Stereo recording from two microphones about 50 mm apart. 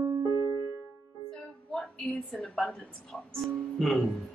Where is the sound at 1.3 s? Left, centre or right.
Centre.